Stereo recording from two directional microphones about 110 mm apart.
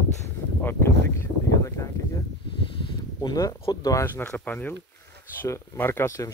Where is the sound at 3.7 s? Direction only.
30° left (ahead or behind).